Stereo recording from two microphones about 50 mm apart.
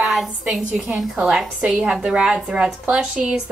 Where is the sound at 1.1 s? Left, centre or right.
Right.